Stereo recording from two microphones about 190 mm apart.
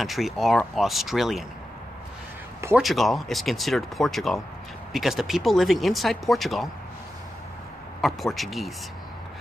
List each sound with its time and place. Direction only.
0.0 s speech: centre (ahead or behind)
2.7 s speech: centre (ahead or behind)
8.0 s speech: centre (ahead or behind)